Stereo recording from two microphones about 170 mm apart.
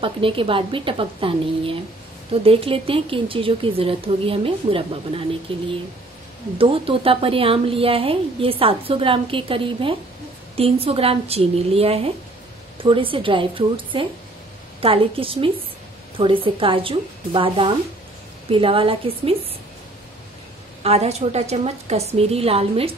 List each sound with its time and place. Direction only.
0.0 s a woman's voice: 30° right (ahead or behind)
20.8 s a woman's voice: 40° right (ahead or behind)